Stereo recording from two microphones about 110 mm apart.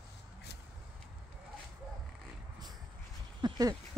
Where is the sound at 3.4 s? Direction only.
35° right (ahead or behind).